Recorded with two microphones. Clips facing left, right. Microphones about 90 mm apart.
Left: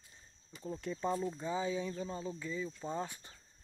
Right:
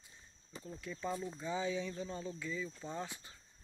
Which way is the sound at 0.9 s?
30° left (ahead or behind).